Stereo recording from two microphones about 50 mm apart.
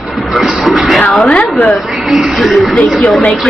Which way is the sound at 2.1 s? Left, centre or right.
Centre.